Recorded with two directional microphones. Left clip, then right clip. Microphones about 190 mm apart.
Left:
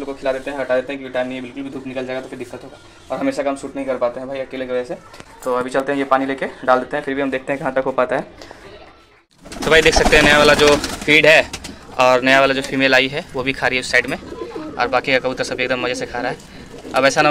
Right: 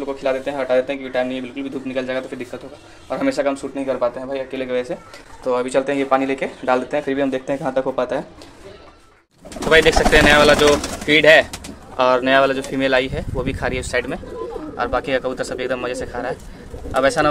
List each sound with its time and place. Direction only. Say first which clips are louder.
0.0 s speech: right 1 dB; 10° right (ahead or behind)
4.6 s speech: even; 20° right (ahead or behind)
7.1 s speech: even; 20° right (ahead or behind); by 8.3 s centre (ahead or behind)
9.7 s speech: left 1 dB; centre (ahead or behind)